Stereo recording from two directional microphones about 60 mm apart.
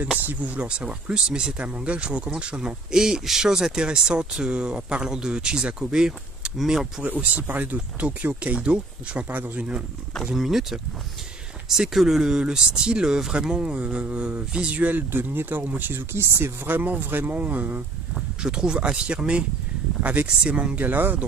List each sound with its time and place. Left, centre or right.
0.2 s speech: right; by 6.9 s centre
7.0 s speech: right
10.3 s speech: centre; by 15.0 s right
15.0 s speech: right
16.6 s speech: right
18.1 s speech: centre; by 21.2 s right